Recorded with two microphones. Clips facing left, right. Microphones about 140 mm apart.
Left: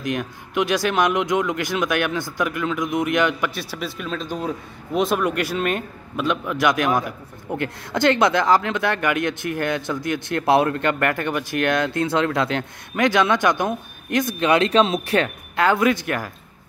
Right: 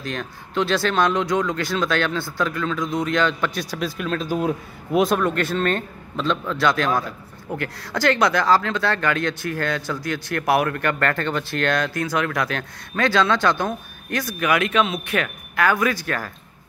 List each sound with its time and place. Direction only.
0.0 s speech: 15° left (ahead or behind)
3.5 s a man's voice: centre (ahead or behind)
5.2 s a man's voice: 10° left (ahead or behind)